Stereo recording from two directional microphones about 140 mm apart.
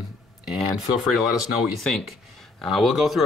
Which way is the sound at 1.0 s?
5° right (ahead or behind).